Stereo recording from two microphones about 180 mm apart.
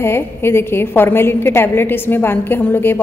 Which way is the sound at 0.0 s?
15° left (ahead or behind).